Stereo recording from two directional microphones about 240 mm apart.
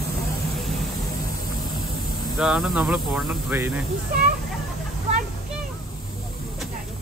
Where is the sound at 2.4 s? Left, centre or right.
Centre.